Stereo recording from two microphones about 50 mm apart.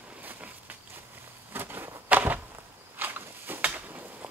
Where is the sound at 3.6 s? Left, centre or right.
Right.